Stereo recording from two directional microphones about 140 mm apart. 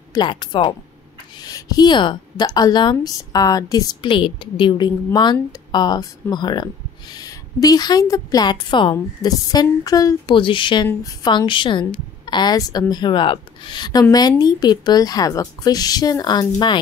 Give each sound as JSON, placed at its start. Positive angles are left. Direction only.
{"t": 0.1, "sound": "a woman's voice", "side_deg": 30}
{"t": 10.3, "sound": "a woman's voice", "side_deg": 35}